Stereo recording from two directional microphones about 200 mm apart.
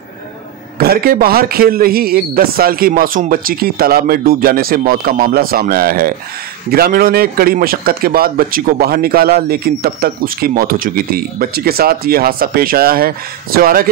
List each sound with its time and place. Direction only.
0.7 s a man's voice: 50° right (ahead or behind)